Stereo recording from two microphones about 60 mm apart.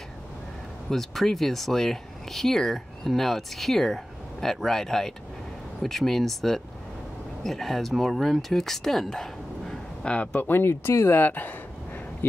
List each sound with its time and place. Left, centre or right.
0.8 s speech: centre
10.1 s speech: left